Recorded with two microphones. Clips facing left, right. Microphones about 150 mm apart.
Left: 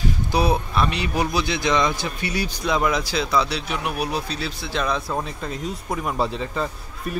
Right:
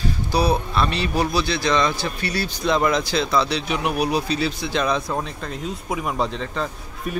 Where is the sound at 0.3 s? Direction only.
20° left (ahead or behind).